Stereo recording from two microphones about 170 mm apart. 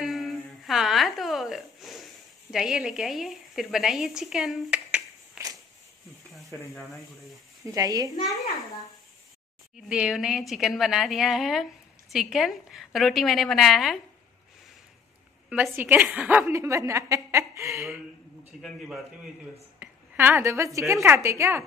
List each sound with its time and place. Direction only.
0.0 s humming: centre (ahead or behind)
2.5 s a woman's voice: 5° right (ahead or behind)
7.6 s speech: 20° right (ahead or behind)
9.8 s a woman's voice: 5° right (ahead or behind)
15.5 s a woman's voice: 10° right (ahead or behind)
18.6 s a woman's voice: centre (ahead or behind)
19.8 s a woman's voice: 10° right (ahead or behind)